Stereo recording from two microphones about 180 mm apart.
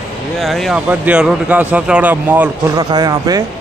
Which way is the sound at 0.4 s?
Centre (ahead or behind).